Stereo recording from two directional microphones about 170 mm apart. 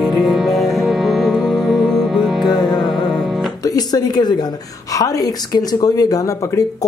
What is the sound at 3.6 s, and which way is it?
A woman's voice, 20° left (ahead or behind).